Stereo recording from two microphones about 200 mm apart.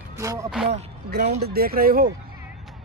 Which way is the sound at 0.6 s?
50° right (ahead or behind).